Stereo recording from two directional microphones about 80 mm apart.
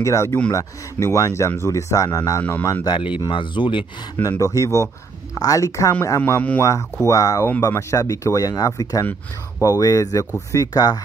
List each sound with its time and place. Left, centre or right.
0.0 s speech: left
2.8 s speech: left
3.3 s speech: left
4.4 s speech: left